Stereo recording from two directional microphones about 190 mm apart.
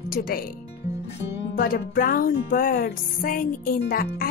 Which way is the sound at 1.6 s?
50° left (ahead or behind).